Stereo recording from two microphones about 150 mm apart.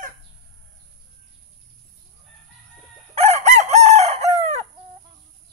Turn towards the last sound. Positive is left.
turn(degrees=-45)  # may be behind; listen again after turning